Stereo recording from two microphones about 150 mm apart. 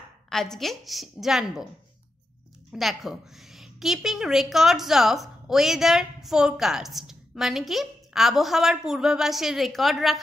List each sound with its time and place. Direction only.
0.3 s a woman's voice: 5° left (ahead or behind)
2.7 s a woman's voice: centre (ahead or behind)